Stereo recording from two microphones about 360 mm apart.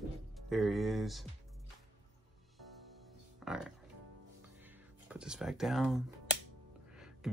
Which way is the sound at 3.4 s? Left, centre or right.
Centre.